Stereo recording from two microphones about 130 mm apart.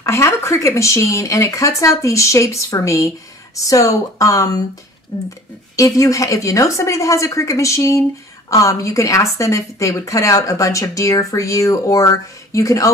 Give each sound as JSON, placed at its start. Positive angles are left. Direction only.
{"t": 0.0, "sound": "a woman's voice", "side_deg": 20}
{"t": 5.8, "sound": "a woman's voice", "side_deg": 25}